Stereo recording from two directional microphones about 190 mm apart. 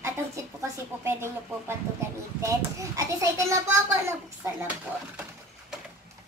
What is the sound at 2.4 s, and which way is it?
A child's voice, 15° right (ahead or behind).